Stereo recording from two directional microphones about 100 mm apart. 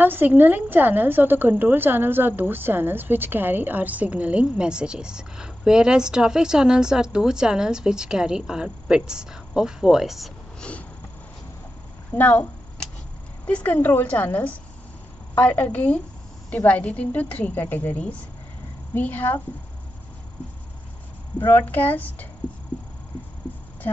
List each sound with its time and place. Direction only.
0.0 s a woman's voice: 20° right (ahead or behind); by 10.3 s centre (ahead or behind)
10.6 s a sound: 15° left (ahead or behind)
12.1 s speech: 20° left (ahead or behind)
13.7 s a woman's voice: 20° left (ahead or behind)
21.4 s speech: 20° left (ahead or behind)